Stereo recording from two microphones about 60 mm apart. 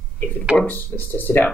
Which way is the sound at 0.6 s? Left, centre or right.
Left.